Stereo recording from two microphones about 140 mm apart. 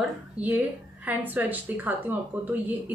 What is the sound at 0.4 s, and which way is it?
A woman's voice, 10° right (ahead or behind).